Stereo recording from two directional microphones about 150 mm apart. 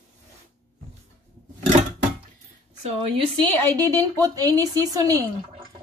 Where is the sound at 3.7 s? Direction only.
25° right (ahead or behind).